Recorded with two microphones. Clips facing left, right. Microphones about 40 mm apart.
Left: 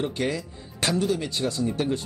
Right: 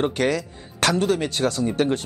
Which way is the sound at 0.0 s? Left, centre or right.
Right.